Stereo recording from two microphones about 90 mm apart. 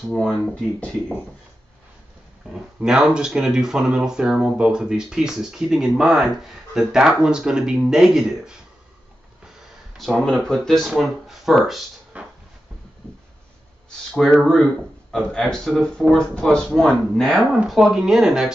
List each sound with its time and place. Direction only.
0.1 s speech: 5° left (ahead or behind)
0.7 s speech: 15° left (ahead or behind)
2.5 s speech: 5° right (ahead or behind)
9.9 s speech: centre (ahead or behind)
12.1 s a sound: 15° right (ahead or behind)
13.8 s speech: 5° left (ahead or behind)